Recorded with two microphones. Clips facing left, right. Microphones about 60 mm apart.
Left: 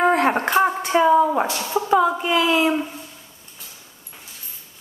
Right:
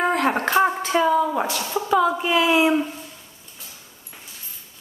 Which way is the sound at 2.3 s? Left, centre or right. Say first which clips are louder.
Right 1 dB; centre.